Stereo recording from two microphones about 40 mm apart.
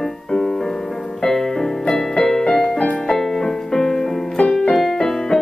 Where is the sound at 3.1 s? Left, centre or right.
Centre.